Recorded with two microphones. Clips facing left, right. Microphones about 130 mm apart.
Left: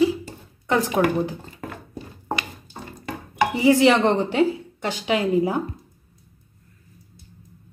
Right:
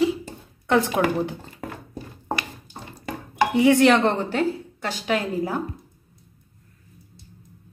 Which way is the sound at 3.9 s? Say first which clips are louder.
Left 2 dB; 15° left (ahead or behind).